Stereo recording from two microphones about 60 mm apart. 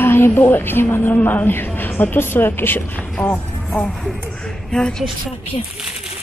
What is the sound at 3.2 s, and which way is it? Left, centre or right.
A woman's voice, left.